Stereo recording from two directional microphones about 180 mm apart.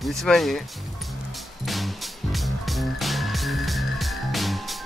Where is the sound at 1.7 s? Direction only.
Centre (ahead or behind).